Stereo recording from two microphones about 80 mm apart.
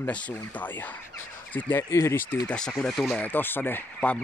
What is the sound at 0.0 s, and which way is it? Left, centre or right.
Speech, centre.